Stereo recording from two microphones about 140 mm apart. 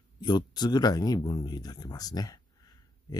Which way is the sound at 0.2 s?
30° left (ahead or behind).